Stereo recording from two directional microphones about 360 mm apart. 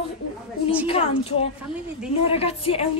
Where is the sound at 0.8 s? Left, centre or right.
Centre.